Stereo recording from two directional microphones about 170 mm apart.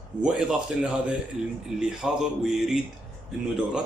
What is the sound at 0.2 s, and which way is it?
Speech, 5° right (ahead or behind).